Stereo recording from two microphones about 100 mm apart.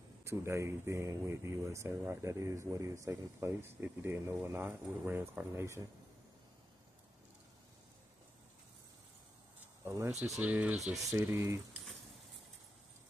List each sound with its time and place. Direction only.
0.2 s speech: 25° right (ahead or behind)
9.8 s speech: 30° right (ahead or behind)
10.4 s speech: 15° right (ahead or behind)
10.9 s speech: centre (ahead or behind)
11.1 s speech: 25° right (ahead or behind)